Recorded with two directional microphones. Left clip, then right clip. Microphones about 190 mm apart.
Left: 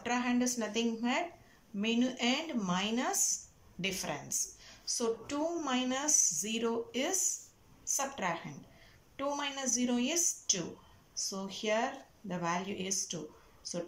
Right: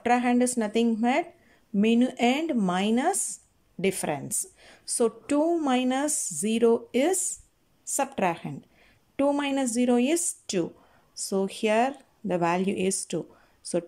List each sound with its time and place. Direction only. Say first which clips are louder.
0.0 s speech: right 10 dB; 45° right (ahead or behind)